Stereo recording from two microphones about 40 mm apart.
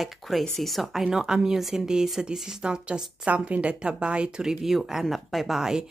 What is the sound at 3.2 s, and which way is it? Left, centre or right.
A woman's voice, right.